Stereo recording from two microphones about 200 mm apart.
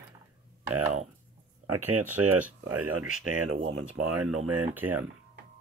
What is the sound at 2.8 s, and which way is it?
Speech, 90° right.